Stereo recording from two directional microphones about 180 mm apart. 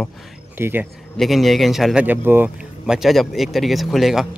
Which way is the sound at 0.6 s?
10° right (ahead or behind).